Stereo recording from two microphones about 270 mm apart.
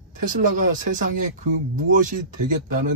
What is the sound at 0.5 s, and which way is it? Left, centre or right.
A man's voice, right.